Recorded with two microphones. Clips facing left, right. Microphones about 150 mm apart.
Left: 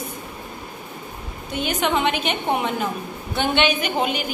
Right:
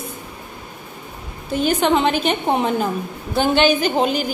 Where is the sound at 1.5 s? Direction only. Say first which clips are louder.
Right 5 dB; 35° right (ahead or behind).